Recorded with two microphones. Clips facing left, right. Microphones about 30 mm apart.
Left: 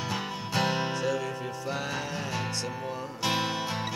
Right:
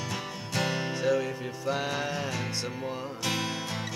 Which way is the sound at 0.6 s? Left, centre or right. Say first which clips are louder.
Left 2 dB; centre.